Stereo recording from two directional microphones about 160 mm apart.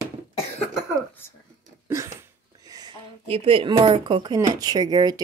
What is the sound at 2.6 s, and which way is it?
Speech, 25° right (ahead or behind).